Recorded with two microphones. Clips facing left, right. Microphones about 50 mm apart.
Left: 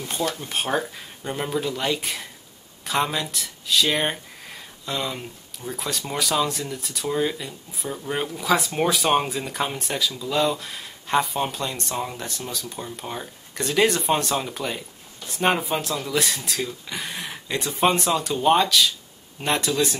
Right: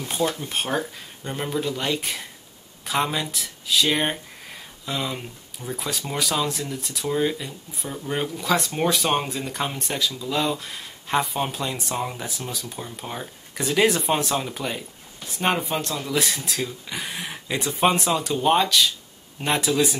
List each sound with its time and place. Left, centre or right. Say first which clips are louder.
0.3 s speech: left 1 dB; centre